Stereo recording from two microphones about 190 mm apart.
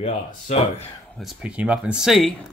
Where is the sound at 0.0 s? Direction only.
35° left (ahead or behind).